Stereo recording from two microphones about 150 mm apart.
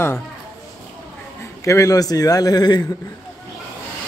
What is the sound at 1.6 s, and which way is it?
A man's voice, 20° left (ahead or behind).